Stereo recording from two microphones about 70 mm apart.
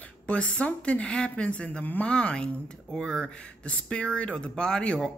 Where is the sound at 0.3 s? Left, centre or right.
Centre.